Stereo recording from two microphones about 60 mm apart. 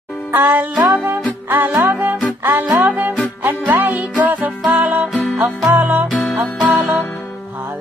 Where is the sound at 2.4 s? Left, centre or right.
Right.